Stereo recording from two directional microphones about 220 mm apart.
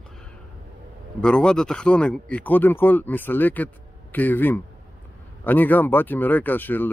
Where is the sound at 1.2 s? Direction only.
5° left (ahead or behind).